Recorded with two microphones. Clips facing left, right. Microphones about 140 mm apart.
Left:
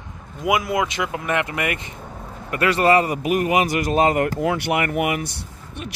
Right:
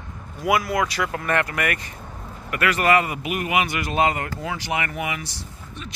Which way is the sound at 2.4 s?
30° left (ahead or behind).